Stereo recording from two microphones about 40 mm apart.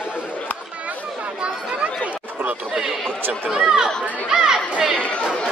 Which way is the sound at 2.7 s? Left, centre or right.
Centre.